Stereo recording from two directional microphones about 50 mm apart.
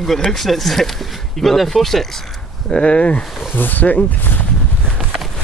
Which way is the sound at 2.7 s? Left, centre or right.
Left.